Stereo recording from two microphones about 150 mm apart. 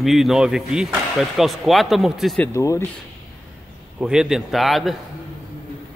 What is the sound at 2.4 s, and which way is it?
Speech, 20° left (ahead or behind).